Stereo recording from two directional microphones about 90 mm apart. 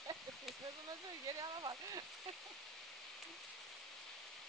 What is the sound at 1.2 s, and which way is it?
Speech, 45° right (ahead or behind).